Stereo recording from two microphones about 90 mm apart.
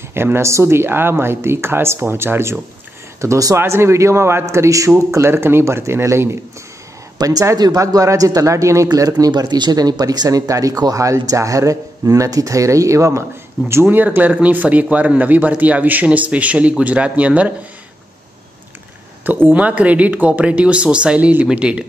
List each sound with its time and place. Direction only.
0.1 s a man's voice: 25° right (ahead or behind)
3.2 s a man's voice: 35° right (ahead or behind)
7.2 s speech: 40° right (ahead or behind)
9.2 s speech: 45° right (ahead or behind)
13.7 s speech: 25° right (ahead or behind)
19.2 s speech: 20° right (ahead or behind)